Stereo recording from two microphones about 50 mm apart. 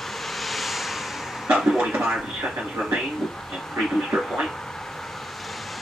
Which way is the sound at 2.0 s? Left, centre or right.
Centre.